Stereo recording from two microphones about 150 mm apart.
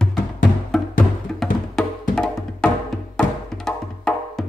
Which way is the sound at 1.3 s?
5° left (ahead or behind).